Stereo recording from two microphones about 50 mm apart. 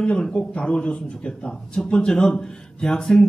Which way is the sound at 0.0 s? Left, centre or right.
Left.